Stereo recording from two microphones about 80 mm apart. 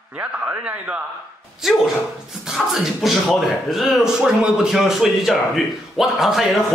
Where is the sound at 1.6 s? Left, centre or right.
Centre.